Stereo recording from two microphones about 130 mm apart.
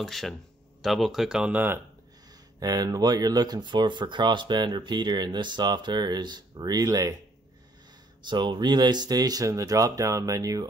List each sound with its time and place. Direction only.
0.0 s speech: centre (ahead or behind); by 1.8 s 15° right (ahead or behind)
2.6 s speech: 30° right (ahead or behind)
8.2 s speech: 35° right (ahead or behind)